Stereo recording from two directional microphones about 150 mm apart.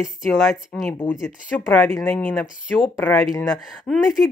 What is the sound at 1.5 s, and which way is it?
Speech, 10° left (ahead or behind).